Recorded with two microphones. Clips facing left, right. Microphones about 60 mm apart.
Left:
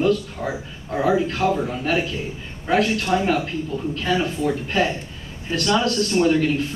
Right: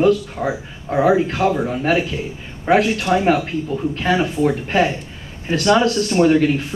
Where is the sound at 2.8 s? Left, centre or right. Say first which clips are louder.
Right 4 dB; right.